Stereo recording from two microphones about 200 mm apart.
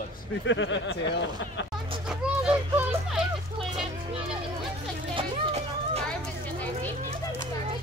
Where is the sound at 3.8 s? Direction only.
30° right (ahead or behind).